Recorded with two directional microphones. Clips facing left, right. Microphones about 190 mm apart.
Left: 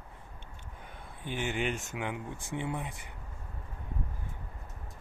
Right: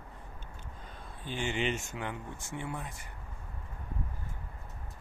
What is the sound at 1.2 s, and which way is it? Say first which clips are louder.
Speech: even; 15° left (ahead or behind).